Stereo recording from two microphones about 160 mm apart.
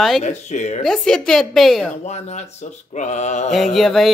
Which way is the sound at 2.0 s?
45° left (ahead or behind).